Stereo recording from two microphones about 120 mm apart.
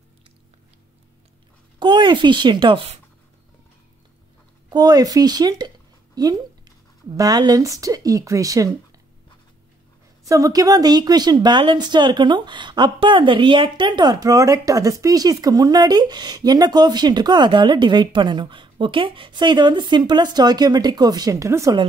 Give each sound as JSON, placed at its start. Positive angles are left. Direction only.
{"t": 1.8, "sound": "speech", "side_deg": -40}
{"t": 4.6, "sound": "a woman's voice", "side_deg": -30}
{"t": 10.2, "sound": "a woman's voice", "side_deg": -30}